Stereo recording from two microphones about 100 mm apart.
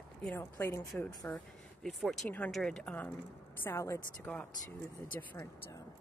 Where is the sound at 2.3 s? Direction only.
15° left (ahead or behind).